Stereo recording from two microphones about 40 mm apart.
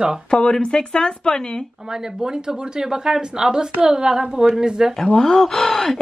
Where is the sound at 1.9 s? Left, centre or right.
Centre.